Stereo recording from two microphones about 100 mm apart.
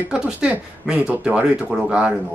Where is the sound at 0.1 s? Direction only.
10° right (ahead or behind).